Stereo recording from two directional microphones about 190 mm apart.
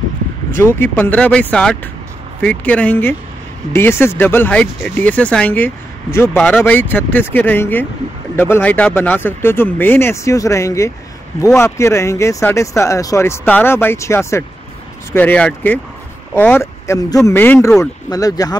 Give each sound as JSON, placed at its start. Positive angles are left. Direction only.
{"t": 0.6, "sound": "speech", "side_deg": 10}
{"t": 18.1, "sound": "speech", "side_deg": 20}